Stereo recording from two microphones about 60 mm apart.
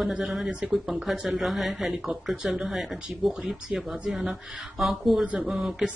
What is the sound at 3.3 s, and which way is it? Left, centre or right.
Speech, centre.